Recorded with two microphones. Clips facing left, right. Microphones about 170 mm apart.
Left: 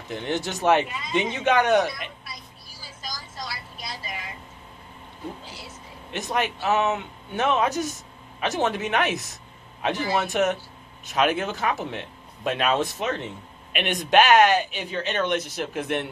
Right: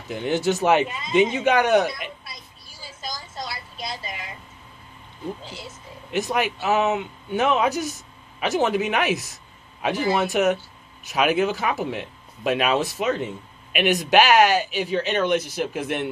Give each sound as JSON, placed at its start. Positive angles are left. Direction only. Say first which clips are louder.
{"t": 0.1, "sound": "speech", "louder": "right 6 dB", "side_deg": -5}
{"t": 3.1, "sound": "a sound", "louder": "right 3 dB", "side_deg": -25}
{"t": 6.1, "sound": "speech", "louder": "right 3 dB", "side_deg": -5}
{"t": 10.2, "sound": "speech", "louder": "right 3 dB", "side_deg": -10}